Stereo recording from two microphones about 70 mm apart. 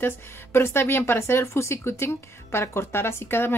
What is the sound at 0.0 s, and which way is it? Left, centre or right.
A woman's voice, left.